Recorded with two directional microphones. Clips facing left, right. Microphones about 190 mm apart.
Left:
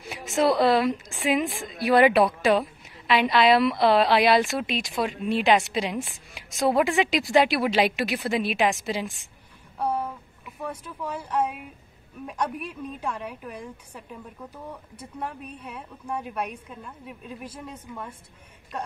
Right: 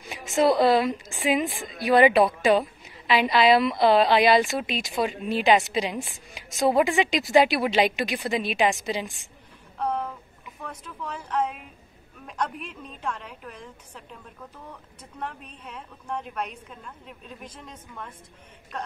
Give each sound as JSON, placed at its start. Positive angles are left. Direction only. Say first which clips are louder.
{"t": 0.0, "sound": "a woman's voice", "louder": "right 1 dB", "side_deg": 0}
{"t": 9.8, "sound": "a sound", "louder": "left 1 dB", "side_deg": 10}
{"t": 12.3, "sound": "a woman's voice", "louder": "left 1 dB", "side_deg": 10}